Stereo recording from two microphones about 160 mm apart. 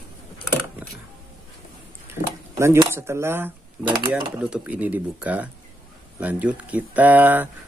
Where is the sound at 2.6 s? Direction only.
15° right (ahead or behind).